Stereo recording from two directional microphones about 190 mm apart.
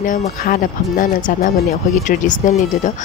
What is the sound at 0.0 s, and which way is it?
Speech, 45° left (ahead or behind).